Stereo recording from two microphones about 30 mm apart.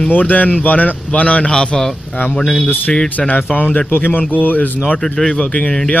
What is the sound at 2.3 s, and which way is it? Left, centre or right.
Speech, left.